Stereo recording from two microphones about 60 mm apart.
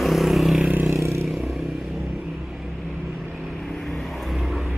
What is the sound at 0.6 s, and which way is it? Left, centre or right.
Vehicle, right.